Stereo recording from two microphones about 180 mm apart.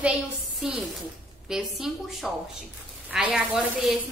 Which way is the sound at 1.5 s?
Centre (ahead or behind).